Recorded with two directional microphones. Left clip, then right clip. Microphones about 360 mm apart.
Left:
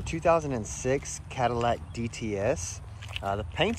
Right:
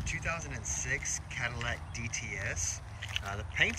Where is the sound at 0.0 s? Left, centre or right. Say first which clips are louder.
Left 12 dB; centre.